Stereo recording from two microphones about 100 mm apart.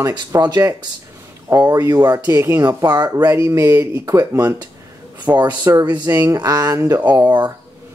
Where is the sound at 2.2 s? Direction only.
25° right (ahead or behind).